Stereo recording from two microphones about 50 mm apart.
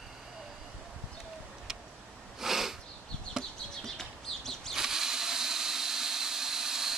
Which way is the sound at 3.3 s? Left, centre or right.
Centre.